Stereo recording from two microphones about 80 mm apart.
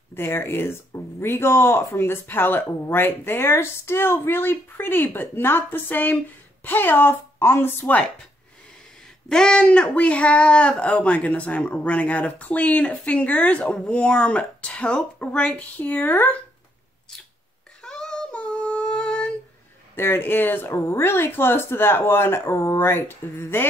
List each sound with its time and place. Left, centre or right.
0.1 s a woman's voice: left
7.8 s speech: centre
9.3 s speech: centre
17.8 s a sound: centre
20.0 s speech: left